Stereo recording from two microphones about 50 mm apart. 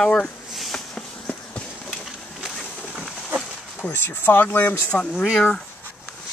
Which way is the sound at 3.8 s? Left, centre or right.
Left.